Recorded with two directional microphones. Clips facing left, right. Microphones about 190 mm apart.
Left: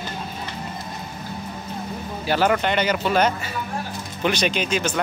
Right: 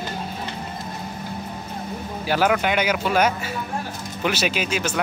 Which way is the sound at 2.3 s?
5° right (ahead or behind).